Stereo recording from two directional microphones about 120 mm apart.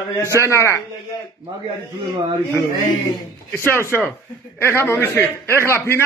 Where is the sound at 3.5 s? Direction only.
20° left (ahead or behind).